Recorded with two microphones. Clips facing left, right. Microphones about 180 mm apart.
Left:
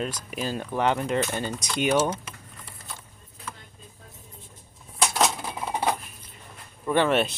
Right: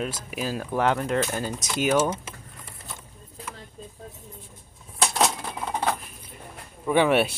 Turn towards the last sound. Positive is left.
turn(degrees=-10)  # may be behind; listen again after turning